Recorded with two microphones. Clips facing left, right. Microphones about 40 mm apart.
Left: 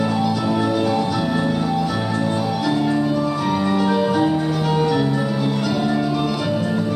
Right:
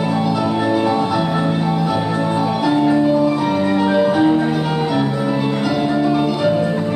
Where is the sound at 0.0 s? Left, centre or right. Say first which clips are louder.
Right 2 dB; right.